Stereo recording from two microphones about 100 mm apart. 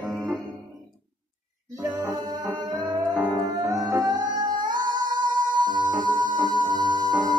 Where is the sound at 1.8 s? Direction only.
10° right (ahead or behind).